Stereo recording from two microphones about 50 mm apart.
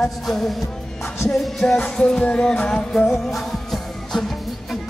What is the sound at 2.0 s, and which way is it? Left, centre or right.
Music, centre.